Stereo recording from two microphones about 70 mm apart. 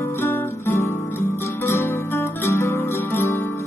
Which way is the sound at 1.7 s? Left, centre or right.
Left.